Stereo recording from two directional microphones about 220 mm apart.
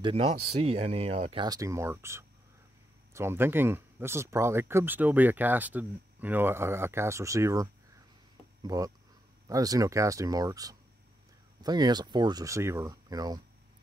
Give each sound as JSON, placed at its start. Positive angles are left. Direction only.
{"t": 0.0, "sound": "speech", "side_deg": -30}